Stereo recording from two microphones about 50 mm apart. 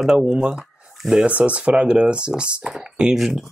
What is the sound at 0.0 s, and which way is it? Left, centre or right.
Speech, centre.